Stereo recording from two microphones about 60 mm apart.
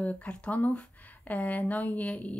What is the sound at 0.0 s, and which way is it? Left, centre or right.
Speech, left.